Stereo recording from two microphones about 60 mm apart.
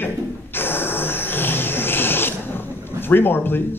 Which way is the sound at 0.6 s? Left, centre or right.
Left.